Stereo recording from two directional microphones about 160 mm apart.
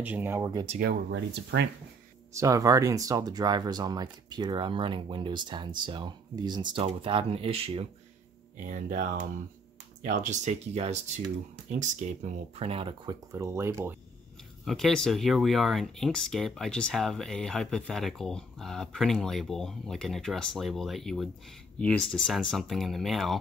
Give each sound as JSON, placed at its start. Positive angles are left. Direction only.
{"t": 0.0, "sound": "speech", "side_deg": -10}
{"t": 0.7, "sound": "speech", "side_deg": -70}
{"t": 2.3, "sound": "speech", "side_deg": -20}
{"t": 8.6, "sound": "speech", "side_deg": -60}
{"t": 12.5, "sound": "speech", "side_deg": -35}
{"t": 14.6, "sound": "speech", "side_deg": 0}